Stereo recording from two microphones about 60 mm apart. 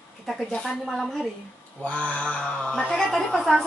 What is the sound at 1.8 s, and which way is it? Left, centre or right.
Mantra, centre.